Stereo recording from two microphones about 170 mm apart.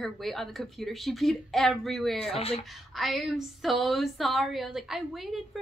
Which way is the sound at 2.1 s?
35° left (ahead or behind).